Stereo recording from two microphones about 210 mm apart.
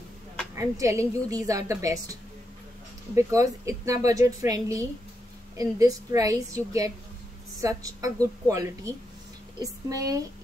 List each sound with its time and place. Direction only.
0.6 s a woman's voice: 15° right (ahead or behind)
3.2 s a woman's voice: 15° right (ahead or behind)